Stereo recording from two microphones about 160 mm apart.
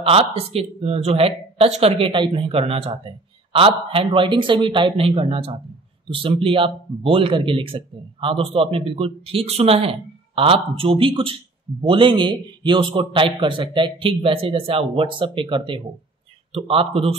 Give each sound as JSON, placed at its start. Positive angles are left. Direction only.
{"t": 0.0, "sound": "a man's voice", "side_deg": -35}